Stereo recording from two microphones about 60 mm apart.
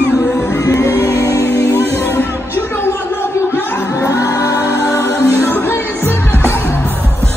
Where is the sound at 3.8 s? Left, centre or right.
Left.